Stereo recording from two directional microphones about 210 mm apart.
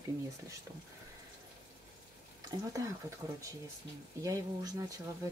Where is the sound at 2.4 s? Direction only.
15° right (ahead or behind).